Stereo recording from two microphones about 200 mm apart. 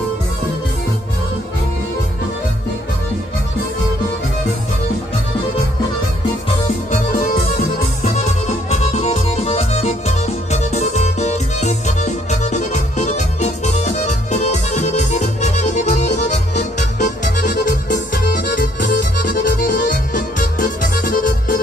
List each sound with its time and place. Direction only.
7.5 s music: 35° left (ahead or behind)